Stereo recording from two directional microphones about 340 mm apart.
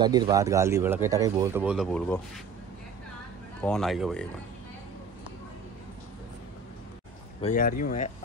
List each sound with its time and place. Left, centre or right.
0.0 s speech: centre
3.6 s speech: centre
7.4 s speech: left